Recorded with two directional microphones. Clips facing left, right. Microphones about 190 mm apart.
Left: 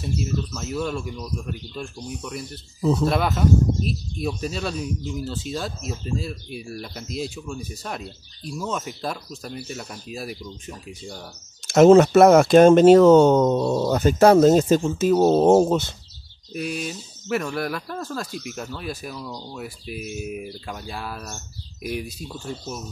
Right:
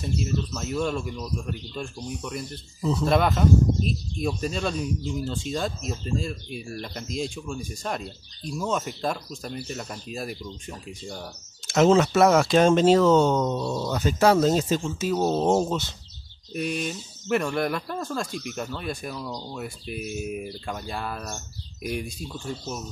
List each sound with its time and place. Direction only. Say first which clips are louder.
0.6 s speech: even; centre (ahead or behind)
11.6 s speech: left 7 dB; 50° left (ahead or behind)
16.5 s speech: even; centre (ahead or behind)